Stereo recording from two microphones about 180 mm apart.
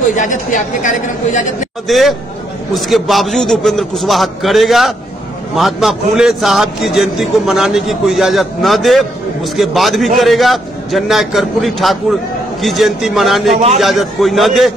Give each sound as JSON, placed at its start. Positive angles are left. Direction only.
{"t": 0.1, "sound": "a woman's voice", "side_deg": 45}
{"t": 1.9, "sound": "a man's voice", "side_deg": 0}